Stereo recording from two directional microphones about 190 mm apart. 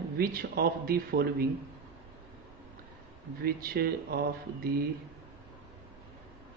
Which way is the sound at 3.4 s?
50° right (ahead or behind).